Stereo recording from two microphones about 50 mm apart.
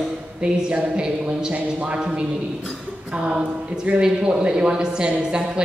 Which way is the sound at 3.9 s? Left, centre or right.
Centre.